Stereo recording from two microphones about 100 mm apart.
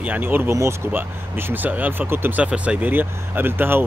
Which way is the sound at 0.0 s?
20° right (ahead or behind).